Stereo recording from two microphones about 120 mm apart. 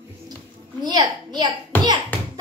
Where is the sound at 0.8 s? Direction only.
35° right (ahead or behind).